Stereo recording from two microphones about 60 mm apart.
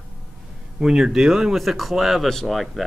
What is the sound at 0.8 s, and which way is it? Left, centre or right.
Speech, centre.